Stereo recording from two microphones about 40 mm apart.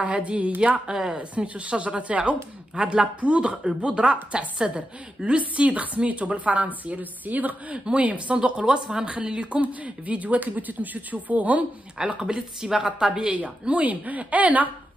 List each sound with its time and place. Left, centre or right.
0.0 s speech: right
0.9 s speech: centre
1.4 s a woman's voice: right
7.7 s speech: right
8.6 s a woman's voice: centre; by 11.6 s right
12.1 s a woman's voice: right
13.4 s speech: right